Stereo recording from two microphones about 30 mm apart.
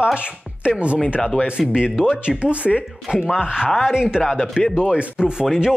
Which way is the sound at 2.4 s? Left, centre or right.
Right.